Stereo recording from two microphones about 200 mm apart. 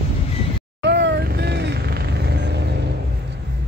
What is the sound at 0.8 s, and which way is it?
Vehicle, 60° right (ahead or behind).